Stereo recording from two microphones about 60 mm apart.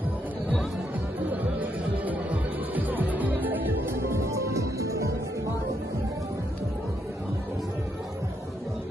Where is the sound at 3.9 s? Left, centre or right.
Right.